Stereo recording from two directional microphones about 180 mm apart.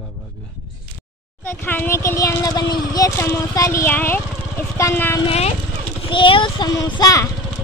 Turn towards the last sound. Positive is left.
turn(degrees=20)  # may be behind; listen again after turning